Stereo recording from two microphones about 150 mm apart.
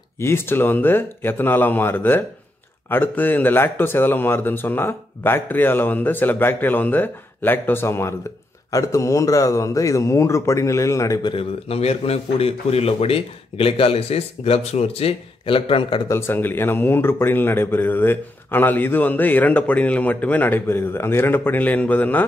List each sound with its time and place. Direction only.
0.2 s a man's voice: 15° left (ahead or behind)
11.3 s a man's voice: 40° left (ahead or behind)
16.1 s speech: 15° left (ahead or behind)